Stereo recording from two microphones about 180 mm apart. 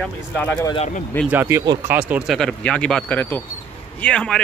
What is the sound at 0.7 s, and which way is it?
Speech, 40° left (ahead or behind).